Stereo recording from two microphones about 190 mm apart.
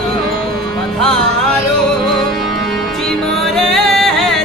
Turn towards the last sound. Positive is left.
turn(degrees=0)  # may be behind; listen again after turning